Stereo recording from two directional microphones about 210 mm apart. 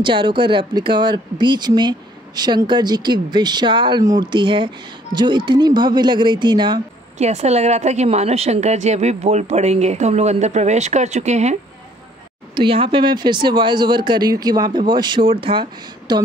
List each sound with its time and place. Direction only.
0.0 s speech: 20° right (ahead or behind)
12.5 s speech: 25° right (ahead or behind)